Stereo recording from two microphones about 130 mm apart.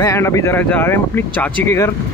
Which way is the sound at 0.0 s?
25° left (ahead or behind).